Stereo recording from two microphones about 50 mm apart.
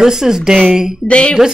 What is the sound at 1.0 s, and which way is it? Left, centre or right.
Speech, left.